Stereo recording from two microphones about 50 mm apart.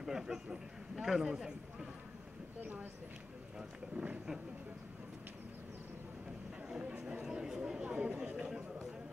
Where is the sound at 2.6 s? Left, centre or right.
Right.